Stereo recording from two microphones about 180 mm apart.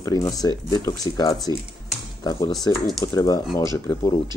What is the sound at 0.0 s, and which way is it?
Speech, 20° left (ahead or behind).